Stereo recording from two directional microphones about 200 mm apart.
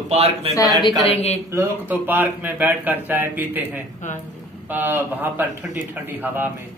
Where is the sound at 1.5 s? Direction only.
10° right (ahead or behind).